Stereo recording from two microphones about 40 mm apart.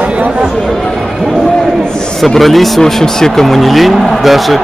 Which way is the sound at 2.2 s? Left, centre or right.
Centre.